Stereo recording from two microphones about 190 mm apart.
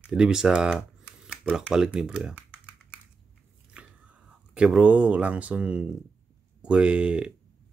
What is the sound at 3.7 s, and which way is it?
Speech, 5° right (ahead or behind).